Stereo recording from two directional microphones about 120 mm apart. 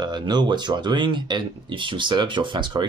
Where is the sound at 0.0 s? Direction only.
40° right (ahead or behind).